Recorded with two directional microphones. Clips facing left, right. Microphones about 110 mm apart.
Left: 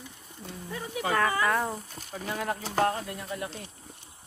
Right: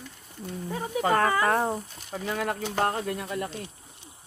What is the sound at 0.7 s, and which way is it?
Speech, 35° right (ahead or behind).